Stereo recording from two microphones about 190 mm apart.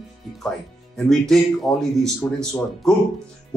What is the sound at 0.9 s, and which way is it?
Speech, centre (ahead or behind).